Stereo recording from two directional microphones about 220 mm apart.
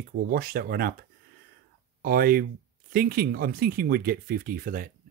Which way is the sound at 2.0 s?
40° right (ahead or behind).